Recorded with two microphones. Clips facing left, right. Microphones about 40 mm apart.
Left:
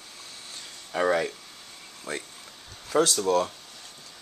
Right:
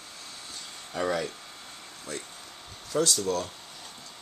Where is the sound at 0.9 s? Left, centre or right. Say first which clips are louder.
Left 5 dB; left.